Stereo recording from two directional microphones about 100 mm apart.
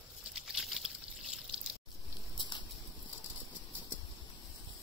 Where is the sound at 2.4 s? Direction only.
55° left (ahead or behind).